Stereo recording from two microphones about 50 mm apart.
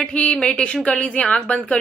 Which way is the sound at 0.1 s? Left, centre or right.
Left.